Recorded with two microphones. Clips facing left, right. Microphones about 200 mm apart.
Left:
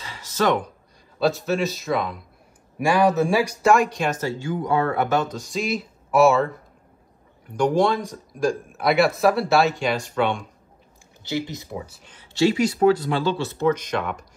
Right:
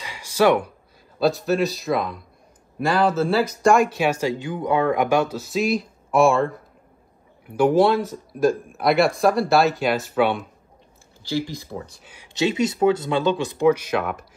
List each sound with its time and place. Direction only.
0.0 s a sound: 10° right (ahead or behind)
1.2 s speech: centre (ahead or behind)
2.8 s speech: 15° left (ahead or behind)
3.6 s speech: centre (ahead or behind)
11.2 s speech: 20° left (ahead or behind)
12.0 s speech: 10° right (ahead or behind)
12.4 s speech: 20° right (ahead or behind); by 14.2 s 5° right (ahead or behind)